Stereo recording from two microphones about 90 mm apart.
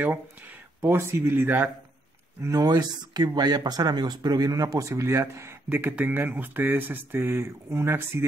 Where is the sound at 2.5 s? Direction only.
45° right (ahead or behind).